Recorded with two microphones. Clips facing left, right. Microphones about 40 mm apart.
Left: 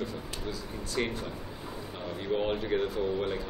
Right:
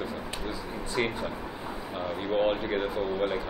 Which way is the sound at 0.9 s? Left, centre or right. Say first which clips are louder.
Right 3 dB; centre.